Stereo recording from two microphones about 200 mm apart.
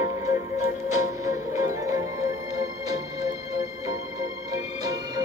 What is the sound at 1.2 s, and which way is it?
Music, 15° right (ahead or behind).